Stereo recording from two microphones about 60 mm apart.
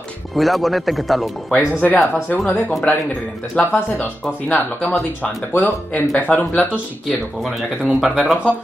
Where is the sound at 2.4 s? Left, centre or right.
Left.